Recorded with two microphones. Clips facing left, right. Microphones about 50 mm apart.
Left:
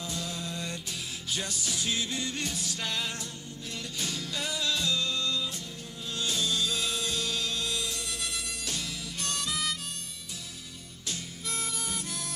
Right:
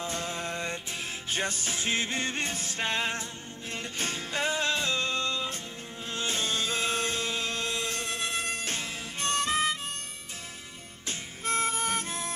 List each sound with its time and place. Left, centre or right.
0.0 s music: right
11.1 s music: right